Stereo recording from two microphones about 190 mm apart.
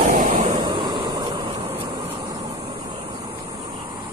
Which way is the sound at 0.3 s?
40° right (ahead or behind).